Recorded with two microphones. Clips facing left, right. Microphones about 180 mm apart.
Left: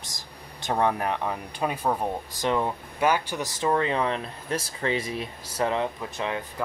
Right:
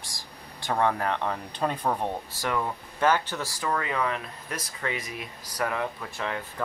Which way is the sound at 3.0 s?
10° left (ahead or behind).